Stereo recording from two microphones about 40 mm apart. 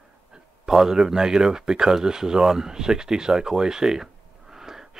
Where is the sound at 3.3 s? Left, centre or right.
Centre.